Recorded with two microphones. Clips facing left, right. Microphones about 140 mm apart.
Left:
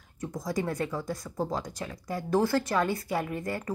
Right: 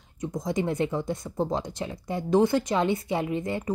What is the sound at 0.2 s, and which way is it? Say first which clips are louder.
Speech: right 3 dB; 20° right (ahead or behind).